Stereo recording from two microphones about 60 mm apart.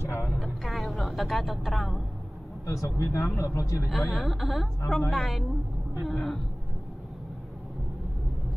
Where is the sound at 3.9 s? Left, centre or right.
Centre.